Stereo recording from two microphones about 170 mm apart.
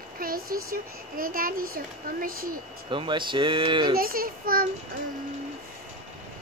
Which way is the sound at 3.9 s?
60° right (ahead or behind).